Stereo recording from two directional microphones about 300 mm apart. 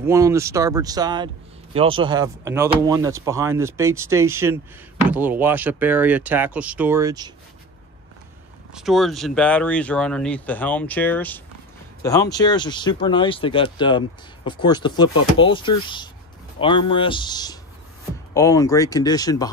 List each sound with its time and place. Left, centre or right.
0.0 s a man's voice: centre
8.7 s speech: centre